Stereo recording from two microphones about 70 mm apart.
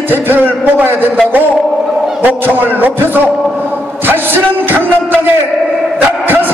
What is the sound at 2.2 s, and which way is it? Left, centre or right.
Speech, right.